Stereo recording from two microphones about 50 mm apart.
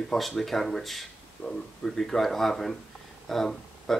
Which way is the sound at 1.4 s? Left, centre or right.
Left.